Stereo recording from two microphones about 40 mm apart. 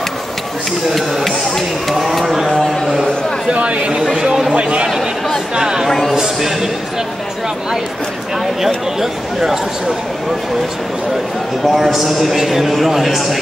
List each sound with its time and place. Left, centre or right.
1.2 s speech: centre
2.0 s a sound: centre
2.6 s a sound: centre
3.5 s speech: right
4.1 s a sound: centre
4.5 s speech: right
4.8 s chatter: centre
5.5 s speech: centre
5.9 s speech: centre
6.1 s speech: centre
8.5 s speech: centre
11.7 s a man's voice: centre